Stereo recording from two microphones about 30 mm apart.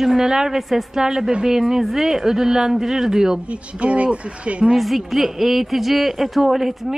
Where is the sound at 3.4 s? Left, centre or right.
Right.